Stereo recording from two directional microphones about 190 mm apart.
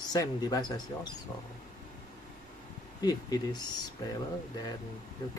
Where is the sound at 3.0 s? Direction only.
20° left (ahead or behind).